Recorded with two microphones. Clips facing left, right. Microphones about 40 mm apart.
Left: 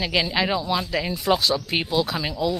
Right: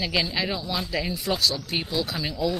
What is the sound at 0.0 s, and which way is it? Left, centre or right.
Speech, centre.